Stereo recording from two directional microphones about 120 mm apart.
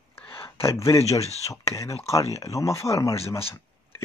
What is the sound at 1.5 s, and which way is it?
Speech, 25° left (ahead or behind).